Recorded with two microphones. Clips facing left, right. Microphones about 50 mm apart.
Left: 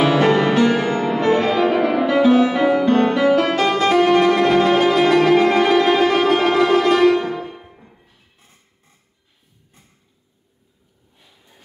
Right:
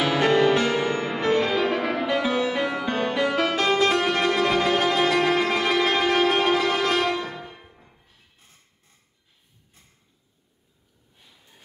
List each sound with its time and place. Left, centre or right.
0.0 s music: centre